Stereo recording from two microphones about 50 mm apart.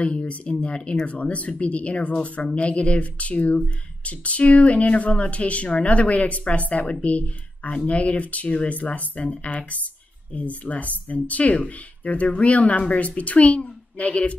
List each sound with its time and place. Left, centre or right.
0.0 s speech: left